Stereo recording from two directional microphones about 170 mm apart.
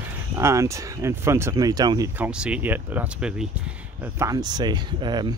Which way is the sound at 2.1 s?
5° right (ahead or behind).